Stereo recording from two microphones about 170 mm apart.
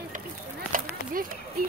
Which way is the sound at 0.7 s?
55° right (ahead or behind).